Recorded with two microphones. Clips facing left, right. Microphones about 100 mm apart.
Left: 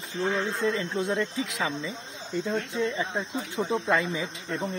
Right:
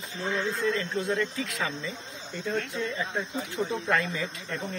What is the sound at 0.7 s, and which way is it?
Speech, 15° left (ahead or behind).